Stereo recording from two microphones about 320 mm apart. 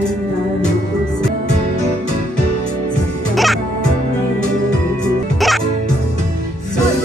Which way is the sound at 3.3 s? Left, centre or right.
Centre.